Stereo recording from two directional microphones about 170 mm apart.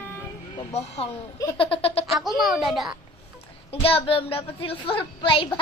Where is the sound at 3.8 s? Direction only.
35° left (ahead or behind).